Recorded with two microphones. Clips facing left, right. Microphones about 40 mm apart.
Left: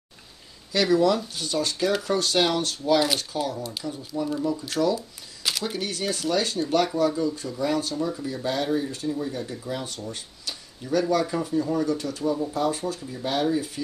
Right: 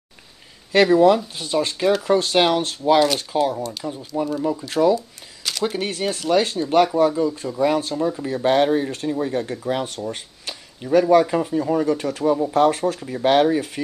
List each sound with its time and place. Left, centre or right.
0.7 s speech: right
9.9 s speech: right